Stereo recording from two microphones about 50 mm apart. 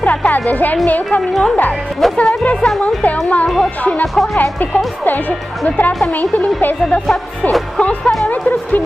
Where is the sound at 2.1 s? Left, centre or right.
Left.